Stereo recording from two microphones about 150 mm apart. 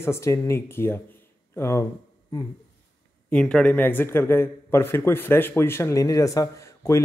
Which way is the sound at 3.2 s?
5° left (ahead or behind).